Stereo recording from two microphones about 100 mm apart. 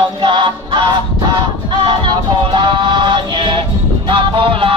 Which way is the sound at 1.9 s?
55° right (ahead or behind).